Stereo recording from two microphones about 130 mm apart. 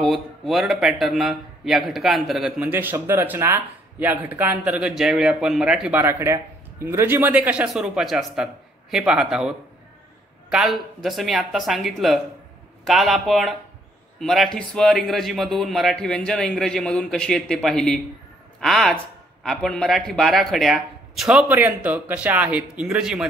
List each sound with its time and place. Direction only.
0.0 s a man's voice: centre (ahead or behind)
2.7 s a man's voice: 15° right (ahead or behind)